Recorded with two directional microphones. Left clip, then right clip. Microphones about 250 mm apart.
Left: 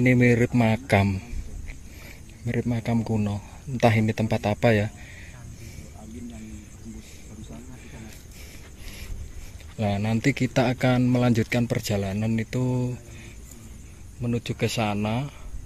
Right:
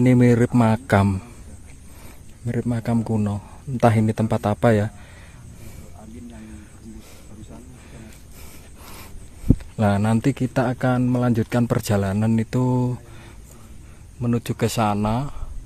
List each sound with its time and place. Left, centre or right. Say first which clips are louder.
0.0 s speech: right 3 dB; centre
2.4 s speech: right 2 dB; centre
9.8 s speech: right 4 dB; right
14.2 s speech: right 4 dB; right